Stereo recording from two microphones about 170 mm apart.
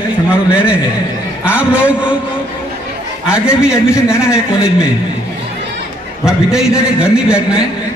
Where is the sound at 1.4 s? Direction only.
5° right (ahead or behind).